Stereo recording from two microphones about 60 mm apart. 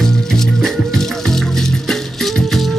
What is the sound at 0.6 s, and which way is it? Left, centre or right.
Music, centre.